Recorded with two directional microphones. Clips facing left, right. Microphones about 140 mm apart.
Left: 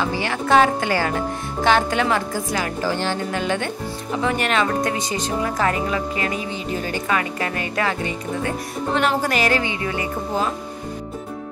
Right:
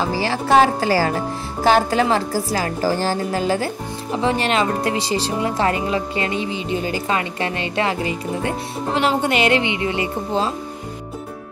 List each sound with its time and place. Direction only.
0.0 s speech: 35° right (ahead or behind)